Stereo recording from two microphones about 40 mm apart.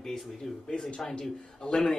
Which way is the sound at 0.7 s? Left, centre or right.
Left.